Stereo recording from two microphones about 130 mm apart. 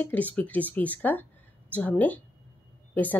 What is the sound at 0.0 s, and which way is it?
A woman's voice, 10° left (ahead or behind).